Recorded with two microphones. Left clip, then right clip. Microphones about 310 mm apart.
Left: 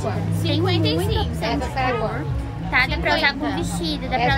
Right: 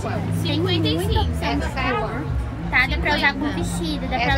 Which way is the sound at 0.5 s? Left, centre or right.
Left.